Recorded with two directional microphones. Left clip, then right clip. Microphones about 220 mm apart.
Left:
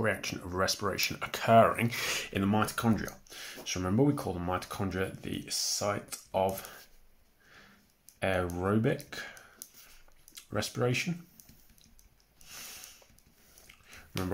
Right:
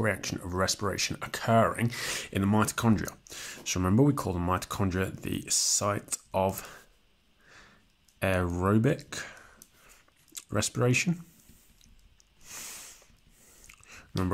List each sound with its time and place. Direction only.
0.0 s speech: 25° right (ahead or behind)
8.2 s speech: 35° right (ahead or behind)
12.4 s a sound: 40° right (ahead or behind)